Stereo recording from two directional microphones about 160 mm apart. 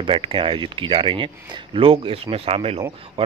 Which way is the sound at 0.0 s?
35° right (ahead or behind).